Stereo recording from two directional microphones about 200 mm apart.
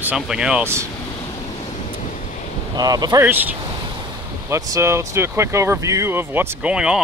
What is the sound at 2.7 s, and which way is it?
Speech, 20° right (ahead or behind).